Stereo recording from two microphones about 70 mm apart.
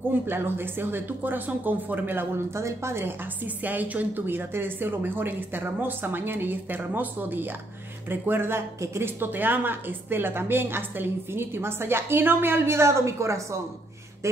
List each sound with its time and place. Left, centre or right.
0.3 s speech: right
2.5 s speech: right
3.6 s speech: right